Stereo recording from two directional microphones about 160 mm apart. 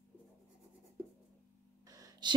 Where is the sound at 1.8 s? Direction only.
25° right (ahead or behind).